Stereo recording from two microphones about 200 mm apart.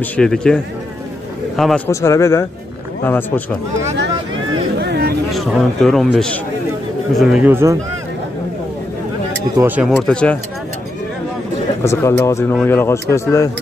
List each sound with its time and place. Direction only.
0.0 s speech: 5° left (ahead or behind)
1.9 s speech: 15° left (ahead or behind)
4.7 s a sound: 55° right (ahead or behind)
5.3 s speech: centre (ahead or behind)
7.2 s speech: 5° right (ahead or behind)
9.6 s speech: 10° right (ahead or behind)
11.8 s speech: 15° left (ahead or behind)